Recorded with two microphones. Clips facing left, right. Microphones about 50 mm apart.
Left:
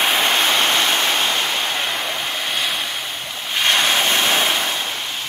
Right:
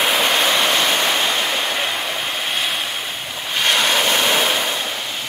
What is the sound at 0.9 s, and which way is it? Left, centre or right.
Vehicle, centre.